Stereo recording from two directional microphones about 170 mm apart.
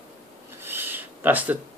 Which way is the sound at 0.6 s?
10° right (ahead or behind).